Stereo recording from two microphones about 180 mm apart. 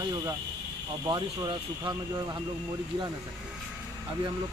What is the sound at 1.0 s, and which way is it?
Speech, 20° right (ahead or behind).